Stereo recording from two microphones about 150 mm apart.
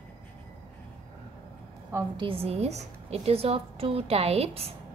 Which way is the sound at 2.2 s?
40° right (ahead or behind).